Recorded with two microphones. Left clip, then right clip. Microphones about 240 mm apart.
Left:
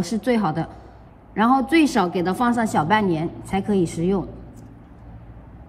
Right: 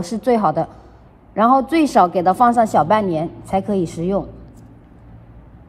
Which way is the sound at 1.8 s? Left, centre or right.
Right.